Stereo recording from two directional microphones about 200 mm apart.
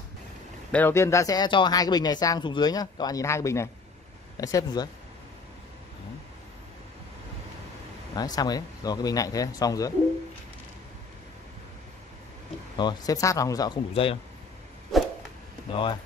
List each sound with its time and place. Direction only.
0.7 s speech: 10° left (ahead or behind)
8.1 s speech: 20° left (ahead or behind)
12.7 s speech: 20° left (ahead or behind)
14.9 s a sound: centre (ahead or behind)
15.7 s speech: 25° left (ahead or behind)